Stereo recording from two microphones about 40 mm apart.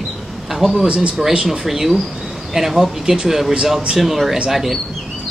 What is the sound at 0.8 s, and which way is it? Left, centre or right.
Speech, right.